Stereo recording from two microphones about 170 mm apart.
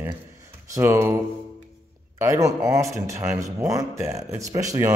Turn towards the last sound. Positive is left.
turn(degrees=-20)  # may be behind; listen again after turning